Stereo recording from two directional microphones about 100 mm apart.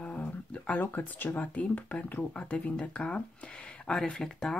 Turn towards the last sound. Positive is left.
turn(degrees=5)  # may be behind; listen again after turning